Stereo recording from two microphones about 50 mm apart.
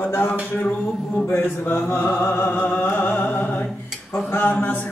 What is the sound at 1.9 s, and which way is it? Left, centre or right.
Music, left.